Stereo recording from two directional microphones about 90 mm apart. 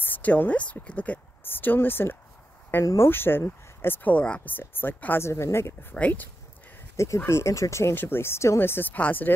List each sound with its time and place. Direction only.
0.0 s speech: 20° left (ahead or behind)
2.8 s speech: 35° left (ahead or behind)
3.1 s speech: 25° left (ahead or behind)
5.9 s speech: 15° left (ahead or behind)
7.2 s speech: 35° left (ahead or behind)